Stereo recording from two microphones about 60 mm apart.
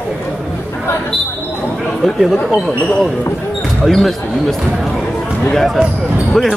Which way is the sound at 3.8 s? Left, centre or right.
Centre.